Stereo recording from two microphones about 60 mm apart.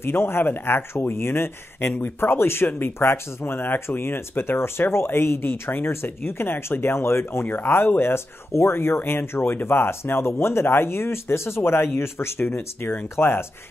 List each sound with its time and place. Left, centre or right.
0.0 s speech: left